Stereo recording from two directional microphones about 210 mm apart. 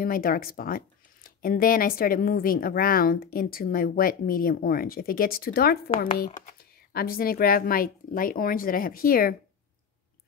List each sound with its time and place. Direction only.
0.0 s a woman's voice: 45° left (ahead or behind)